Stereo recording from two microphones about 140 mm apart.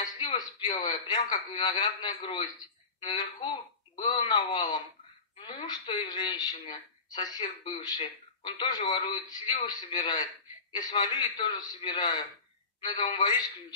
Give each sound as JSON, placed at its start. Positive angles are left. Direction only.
{"t": 0.0, "sound": "a man's voice", "side_deg": 30}
{"t": 7.4, "sound": "speech", "side_deg": 45}
{"t": 7.8, "sound": "a man's voice", "side_deg": 35}